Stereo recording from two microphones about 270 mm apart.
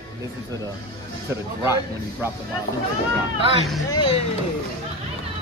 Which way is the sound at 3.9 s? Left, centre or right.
Centre.